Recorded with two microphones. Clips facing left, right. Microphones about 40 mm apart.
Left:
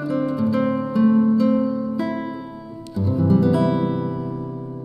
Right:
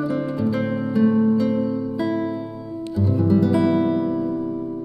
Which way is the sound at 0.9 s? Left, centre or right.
Centre.